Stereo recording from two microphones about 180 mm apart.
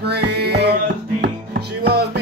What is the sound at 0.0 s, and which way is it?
Music, 65° right (ahead or behind).